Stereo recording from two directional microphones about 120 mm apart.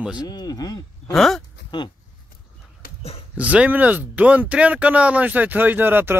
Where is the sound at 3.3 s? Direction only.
10° right (ahead or behind).